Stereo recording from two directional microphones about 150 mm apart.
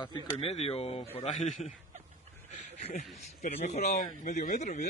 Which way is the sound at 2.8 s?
50° left (ahead or behind).